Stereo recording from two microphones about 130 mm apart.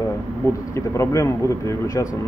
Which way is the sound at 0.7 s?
20° left (ahead or behind).